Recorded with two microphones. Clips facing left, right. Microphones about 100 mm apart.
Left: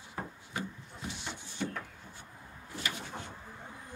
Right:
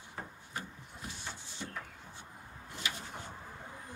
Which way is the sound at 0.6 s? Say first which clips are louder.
Left 4 dB; 90° left.